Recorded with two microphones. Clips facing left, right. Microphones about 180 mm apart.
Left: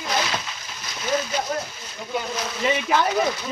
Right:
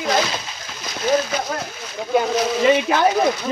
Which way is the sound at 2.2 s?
85° right.